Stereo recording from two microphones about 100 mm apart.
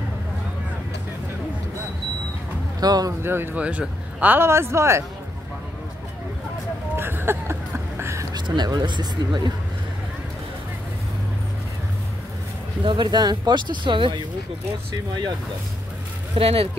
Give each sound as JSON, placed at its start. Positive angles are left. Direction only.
{"t": 2.8, "sound": "speech", "side_deg": -40}
{"t": 3.2, "sound": "speech", "side_deg": -20}
{"t": 7.0, "sound": "a sound", "side_deg": -20}
{"t": 8.3, "sound": "speech", "side_deg": -45}
{"t": 12.8, "sound": "speech", "side_deg": -50}
{"t": 16.3, "sound": "speech", "side_deg": -75}